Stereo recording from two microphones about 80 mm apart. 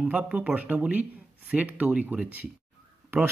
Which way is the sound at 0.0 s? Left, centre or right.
Centre.